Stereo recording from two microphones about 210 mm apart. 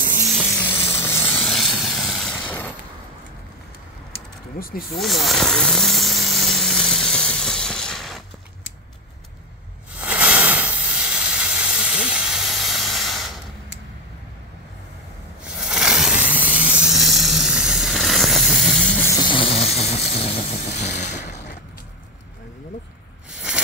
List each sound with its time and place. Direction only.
0.6 s vehicle: 10° left (ahead or behind)
4.1 s a sound: 45° left (ahead or behind)
4.9 s vehicle: centre (ahead or behind)
9.9 s hiss: 5° right (ahead or behind)
15.6 s vehicle: 5° right (ahead or behind)
19.0 s vehicle: 20° left (ahead or behind)